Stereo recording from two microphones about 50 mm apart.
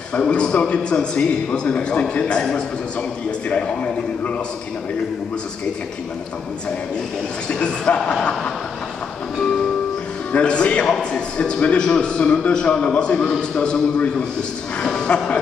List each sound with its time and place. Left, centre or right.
0.1 s a man's voice: centre
7.4 s a man's voice: centre
10.3 s a man's voice: left